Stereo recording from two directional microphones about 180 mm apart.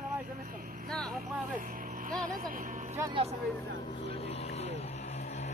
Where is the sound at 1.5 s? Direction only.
50° right (ahead or behind).